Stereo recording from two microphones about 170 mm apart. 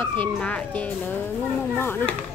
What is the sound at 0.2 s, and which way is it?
Speech, 5° left (ahead or behind).